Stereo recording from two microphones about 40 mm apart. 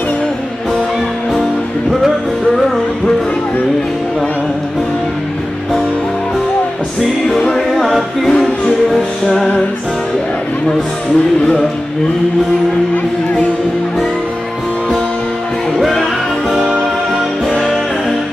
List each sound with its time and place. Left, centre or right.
1.3 s music: centre
7.5 s music: centre
12.9 s music: left
17.5 s music: left